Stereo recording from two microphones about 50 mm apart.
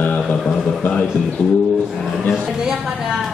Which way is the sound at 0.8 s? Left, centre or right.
Left.